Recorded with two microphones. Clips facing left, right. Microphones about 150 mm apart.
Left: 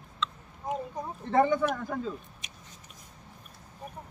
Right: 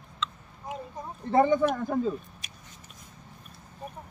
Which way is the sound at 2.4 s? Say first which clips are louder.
Even; 20° left (ahead or behind).